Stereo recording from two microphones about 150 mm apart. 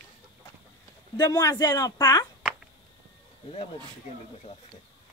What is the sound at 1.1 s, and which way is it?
Speech, 25° left (ahead or behind).